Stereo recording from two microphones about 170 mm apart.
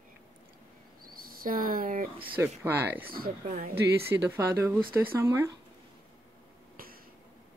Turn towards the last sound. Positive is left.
turn(degrees=-60)  # may be behind; listen again after turning